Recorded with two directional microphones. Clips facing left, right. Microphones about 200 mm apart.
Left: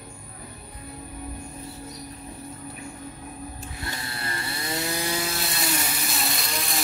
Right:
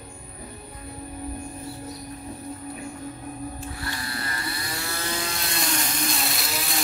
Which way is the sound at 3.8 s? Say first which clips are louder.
Left 1 dB; 25° left (ahead or behind).